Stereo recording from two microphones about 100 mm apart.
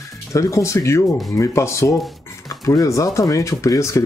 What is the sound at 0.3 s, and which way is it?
Speech, 30° left (ahead or behind).